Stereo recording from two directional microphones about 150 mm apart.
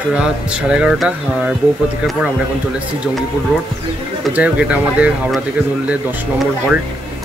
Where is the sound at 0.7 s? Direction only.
5° right (ahead or behind).